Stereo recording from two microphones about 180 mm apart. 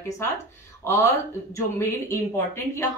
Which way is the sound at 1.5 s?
15° left (ahead or behind).